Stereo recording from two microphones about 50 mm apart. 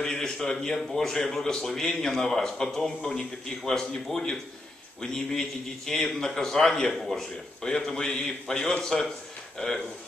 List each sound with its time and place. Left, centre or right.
0.0 s a man's voice: centre